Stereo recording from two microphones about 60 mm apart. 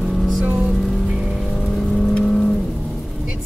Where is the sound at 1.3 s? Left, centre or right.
Centre.